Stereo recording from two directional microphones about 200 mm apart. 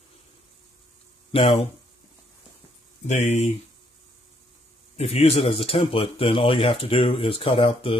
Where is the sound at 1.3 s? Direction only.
30° left (ahead or behind).